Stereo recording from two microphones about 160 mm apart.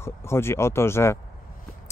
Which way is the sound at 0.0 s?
15° left (ahead or behind).